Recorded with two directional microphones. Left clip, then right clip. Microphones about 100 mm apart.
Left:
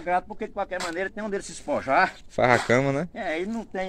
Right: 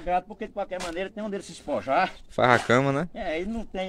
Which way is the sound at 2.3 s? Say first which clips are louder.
Right 1 dB; 10° right (ahead or behind).